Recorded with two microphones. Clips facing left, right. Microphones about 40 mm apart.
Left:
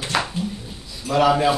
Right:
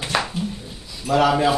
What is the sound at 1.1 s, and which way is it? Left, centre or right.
Speech, centre.